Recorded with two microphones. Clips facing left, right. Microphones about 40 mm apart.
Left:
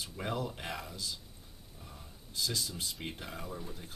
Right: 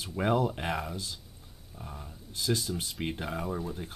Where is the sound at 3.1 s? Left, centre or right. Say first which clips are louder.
Right 8 dB; right.